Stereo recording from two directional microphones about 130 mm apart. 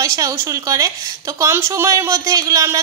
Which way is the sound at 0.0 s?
25° right (ahead or behind).